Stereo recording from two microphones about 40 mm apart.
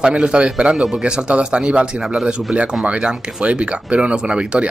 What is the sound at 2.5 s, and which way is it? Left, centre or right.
Speech, right.